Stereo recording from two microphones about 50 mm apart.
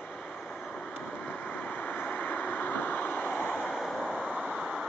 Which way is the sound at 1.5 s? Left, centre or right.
Left.